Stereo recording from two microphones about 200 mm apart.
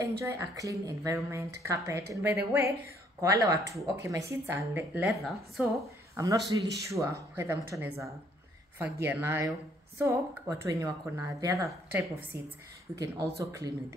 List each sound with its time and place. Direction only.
0.2 s speech: 15° right (ahead or behind)
5.0 s a woman's voice: centre (ahead or behind)
6.1 s speech: 20° right (ahead or behind)